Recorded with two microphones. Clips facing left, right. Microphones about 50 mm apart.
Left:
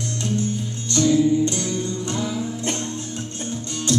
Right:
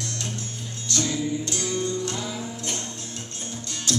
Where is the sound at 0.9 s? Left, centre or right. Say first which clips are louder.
Left 9 dB; left.